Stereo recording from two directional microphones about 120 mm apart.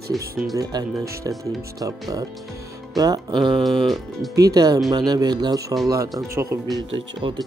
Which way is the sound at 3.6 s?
Centre (ahead or behind).